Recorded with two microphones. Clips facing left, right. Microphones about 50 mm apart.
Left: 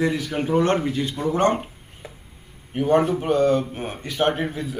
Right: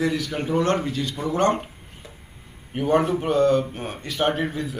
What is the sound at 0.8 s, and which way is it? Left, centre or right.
Speech, left.